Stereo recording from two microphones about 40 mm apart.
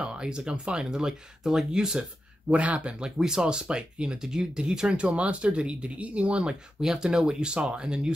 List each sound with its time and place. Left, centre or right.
0.0 s a sound: right
0.5 s speech: centre
2.5 s speech: right
3.2 s speech: centre
4.2 s speech: centre
4.8 s speech: right
6.8 s speech: centre